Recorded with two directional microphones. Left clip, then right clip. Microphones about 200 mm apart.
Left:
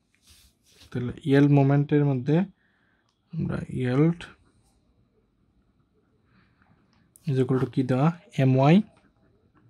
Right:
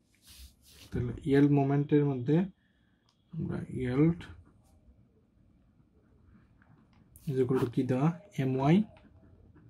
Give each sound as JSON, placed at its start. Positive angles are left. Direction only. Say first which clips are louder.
{"t": 0.9, "sound": "speech", "louder": "left 5 dB", "side_deg": 50}
{"t": 3.4, "sound": "speech", "louder": "left 6 dB", "side_deg": 50}
{"t": 7.2, "sound": "speech", "louder": "left 3 dB", "side_deg": 50}